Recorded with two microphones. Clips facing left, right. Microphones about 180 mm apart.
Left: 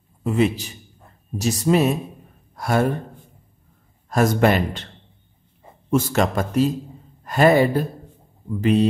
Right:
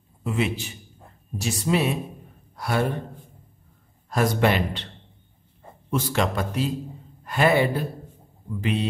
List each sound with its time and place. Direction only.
0.2 s a man's voice: 40° left (ahead or behind)
4.1 s speech: 45° left (ahead or behind)
5.9 s a man's voice: 45° left (ahead or behind)